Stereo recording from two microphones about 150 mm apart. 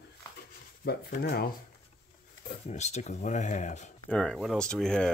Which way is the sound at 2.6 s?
50° left (ahead or behind).